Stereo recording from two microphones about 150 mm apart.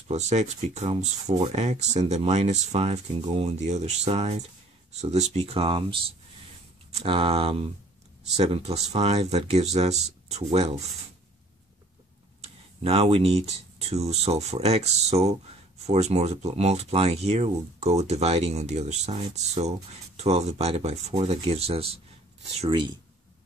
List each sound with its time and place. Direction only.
0.1 s speech: 50° right (ahead or behind)
7.0 s speech: 40° right (ahead or behind)
12.4 s speech: 40° right (ahead or behind)
22.7 s speech: 30° right (ahead or behind)